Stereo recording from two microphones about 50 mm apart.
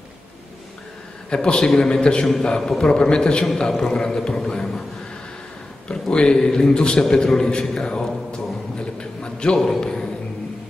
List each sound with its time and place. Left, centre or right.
1.3 s a man's voice: centre
5.9 s a man's voice: centre
8.7 s a sound: centre
9.6 s a man's voice: centre